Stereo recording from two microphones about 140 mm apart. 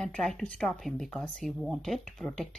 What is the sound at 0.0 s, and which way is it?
Speech, 5° left (ahead or behind).